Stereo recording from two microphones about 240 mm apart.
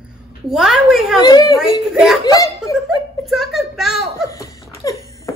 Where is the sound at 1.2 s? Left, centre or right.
Centre.